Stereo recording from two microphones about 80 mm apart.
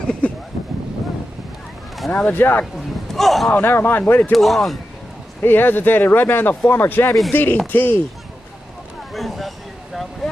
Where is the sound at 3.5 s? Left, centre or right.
Left.